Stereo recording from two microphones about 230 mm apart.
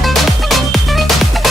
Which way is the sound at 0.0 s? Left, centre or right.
Centre.